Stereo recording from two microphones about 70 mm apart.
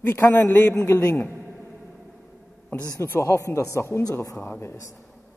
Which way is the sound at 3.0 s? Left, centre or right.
Left.